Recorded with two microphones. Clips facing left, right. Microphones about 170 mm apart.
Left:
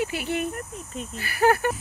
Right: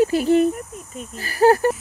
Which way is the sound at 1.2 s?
35° right (ahead or behind).